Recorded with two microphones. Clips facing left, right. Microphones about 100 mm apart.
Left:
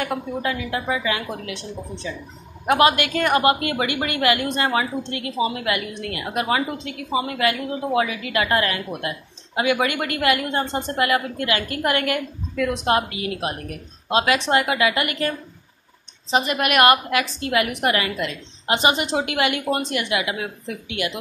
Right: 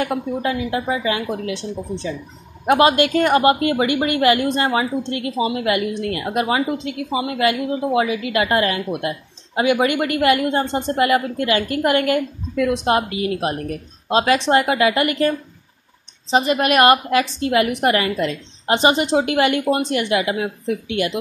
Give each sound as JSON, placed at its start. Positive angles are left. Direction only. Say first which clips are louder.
{"t": 0.0, "sound": "a woman's voice", "louder": "right 3 dB", "side_deg": -30}